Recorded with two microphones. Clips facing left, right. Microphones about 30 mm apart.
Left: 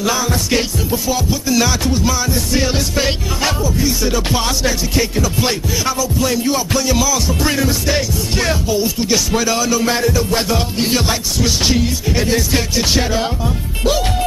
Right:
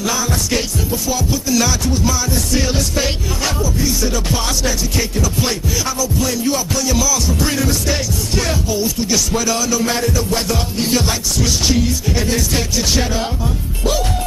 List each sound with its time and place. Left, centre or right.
0.0 s music: centre